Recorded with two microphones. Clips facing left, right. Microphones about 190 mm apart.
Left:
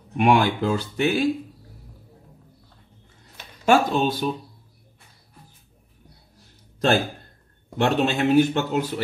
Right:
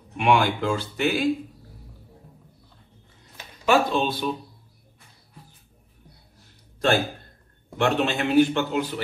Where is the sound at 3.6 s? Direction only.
45° left (ahead or behind).